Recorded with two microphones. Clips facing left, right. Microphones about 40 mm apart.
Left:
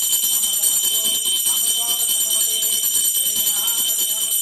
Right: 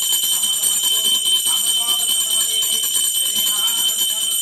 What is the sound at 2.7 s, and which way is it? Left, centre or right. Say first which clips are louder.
Jingle bell: right 4 dB; centre.